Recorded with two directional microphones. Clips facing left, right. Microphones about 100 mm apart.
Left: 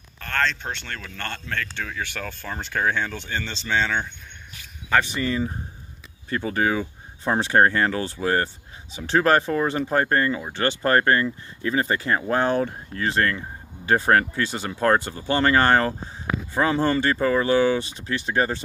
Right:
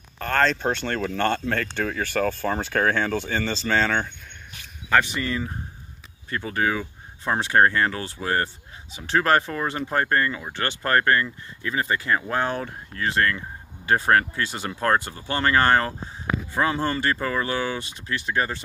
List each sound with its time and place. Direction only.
0.2 s speech: 10° right (ahead or behind)
4.9 s speech: 25° left (ahead or behind)